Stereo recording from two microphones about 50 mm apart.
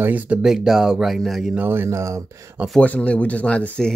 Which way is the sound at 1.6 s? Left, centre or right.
Right.